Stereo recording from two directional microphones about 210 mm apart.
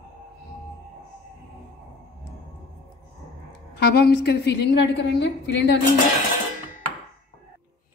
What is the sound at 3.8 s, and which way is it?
A woman's voice, 50° left (ahead or behind).